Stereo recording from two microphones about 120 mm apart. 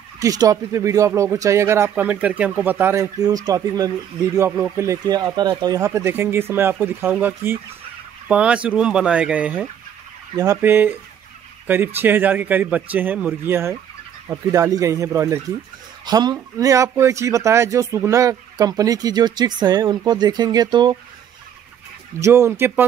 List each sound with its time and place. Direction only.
0.2 s speech: 30° right (ahead or behind)
4.5 s speech: 10° right (ahead or behind)
5.0 s speech: 35° right (ahead or behind); by 9.7 s 10° right (ahead or behind)
10.3 s speech: 30° right (ahead or behind)
10.6 s speech: 15° right (ahead or behind)
16.1 s speech: 35° right (ahead or behind)
22.2 s speech: 25° right (ahead or behind)